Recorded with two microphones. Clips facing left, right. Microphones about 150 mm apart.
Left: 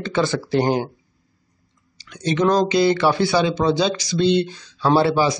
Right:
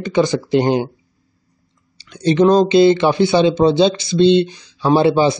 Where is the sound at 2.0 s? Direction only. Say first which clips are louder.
Right 7 dB; 30° right (ahead or behind).